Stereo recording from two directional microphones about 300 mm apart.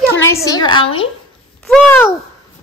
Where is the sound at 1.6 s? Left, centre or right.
Centre.